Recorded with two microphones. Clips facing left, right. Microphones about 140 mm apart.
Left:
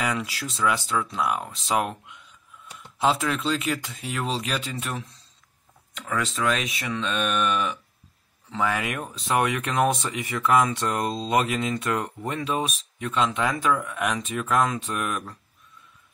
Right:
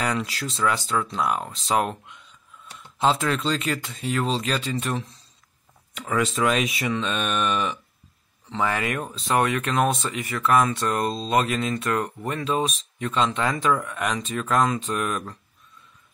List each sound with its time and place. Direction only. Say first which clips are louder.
0.0 s speech: right 2 dB; 5° left (ahead or behind)
5.9 s speech: right 4 dB; 10° right (ahead or behind)